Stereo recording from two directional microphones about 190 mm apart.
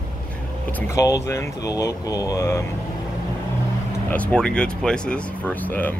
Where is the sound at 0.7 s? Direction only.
15° left (ahead or behind).